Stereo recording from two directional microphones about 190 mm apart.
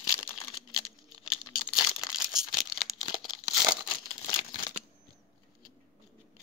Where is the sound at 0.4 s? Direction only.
30° left (ahead or behind).